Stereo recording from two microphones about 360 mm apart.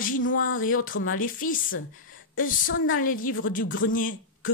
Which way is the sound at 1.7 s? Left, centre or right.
Left.